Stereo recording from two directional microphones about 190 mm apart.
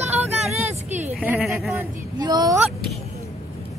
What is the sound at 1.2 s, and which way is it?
Speech, 5° right (ahead or behind).